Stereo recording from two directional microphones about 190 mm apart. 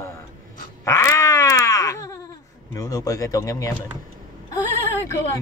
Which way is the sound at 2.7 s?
20° left (ahead or behind).